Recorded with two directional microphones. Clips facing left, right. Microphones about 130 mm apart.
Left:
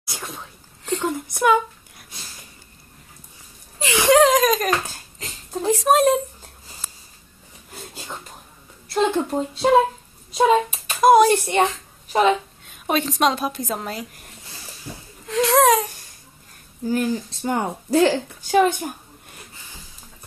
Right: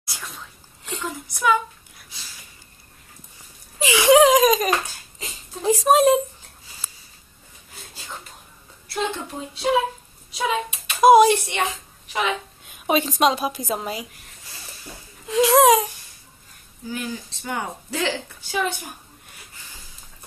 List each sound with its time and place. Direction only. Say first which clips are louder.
0.1 s sneeze: left 4 dB; 55° left (ahead or behind)
0.9 s a sound: left 7 dB; 50° left (ahead or behind)
1.3 s a woman's voice: left 2 dB; 50° left (ahead or behind)
2.0 s a sound: left 3 dB; 50° left (ahead or behind)
3.8 s a woman's voice: right 1 dB; 5° right (ahead or behind)
8.9 s a woman's voice: left 7 dB; 50° left (ahead or behind)
11.0 s speech: right 1 dB; 5° right (ahead or behind)
11.5 s a child's voice: left 6 dB; 40° left (ahead or behind)
12.8 s a woman's voice: right 1 dB; 5° right (ahead or behind)
14.9 s a sound: left 5 dB; centre (ahead or behind)
15.2 s a woman's voice: right 1 dB; 5° right (ahead or behind)
16.8 s a woman's voice: left 8 dB; 45° left (ahead or behind)